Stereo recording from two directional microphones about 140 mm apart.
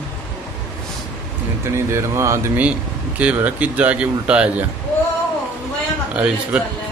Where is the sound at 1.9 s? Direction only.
20° right (ahead or behind).